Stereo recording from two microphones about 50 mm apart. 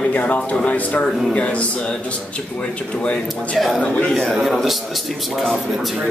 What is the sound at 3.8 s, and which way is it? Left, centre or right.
Speech, left.